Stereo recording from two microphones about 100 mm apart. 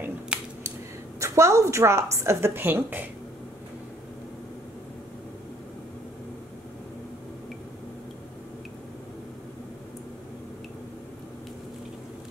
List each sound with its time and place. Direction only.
0.3 s scissors: 10° right (ahead or behind)
1.2 s a woman's voice: 30° right (ahead or behind)